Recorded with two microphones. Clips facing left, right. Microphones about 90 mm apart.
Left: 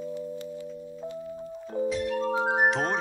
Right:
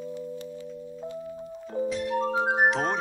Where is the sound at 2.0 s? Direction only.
25° right (ahead or behind).